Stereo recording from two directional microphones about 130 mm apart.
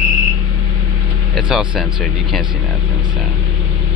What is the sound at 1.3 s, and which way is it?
Speech, 5° right (ahead or behind).